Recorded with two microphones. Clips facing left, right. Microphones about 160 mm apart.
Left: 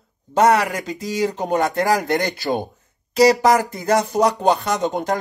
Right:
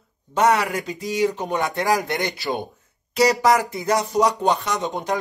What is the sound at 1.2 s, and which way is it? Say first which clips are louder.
Speech: left 2 dB; 40° left (ahead or behind).